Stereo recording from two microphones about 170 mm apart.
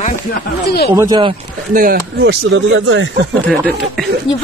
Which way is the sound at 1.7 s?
75° right (ahead or behind).